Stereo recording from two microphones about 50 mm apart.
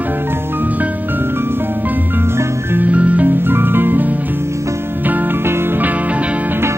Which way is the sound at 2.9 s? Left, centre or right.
Right.